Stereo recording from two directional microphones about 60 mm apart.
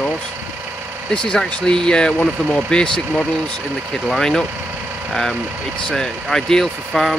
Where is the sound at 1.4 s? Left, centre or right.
Centre.